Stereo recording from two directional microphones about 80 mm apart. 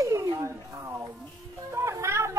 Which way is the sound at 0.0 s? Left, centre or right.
Right.